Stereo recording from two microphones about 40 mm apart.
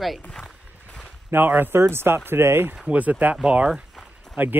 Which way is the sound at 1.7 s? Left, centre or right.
Right.